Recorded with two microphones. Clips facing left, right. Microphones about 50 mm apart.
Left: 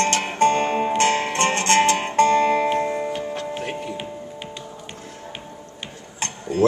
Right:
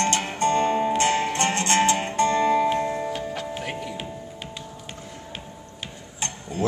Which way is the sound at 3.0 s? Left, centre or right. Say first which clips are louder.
Left 2 dB; centre.